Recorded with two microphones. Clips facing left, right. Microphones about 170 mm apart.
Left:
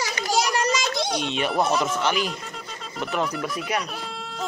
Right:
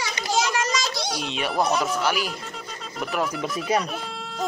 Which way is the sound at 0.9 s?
5° right (ahead or behind).